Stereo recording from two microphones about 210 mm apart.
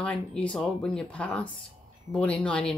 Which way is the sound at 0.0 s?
5° left (ahead or behind).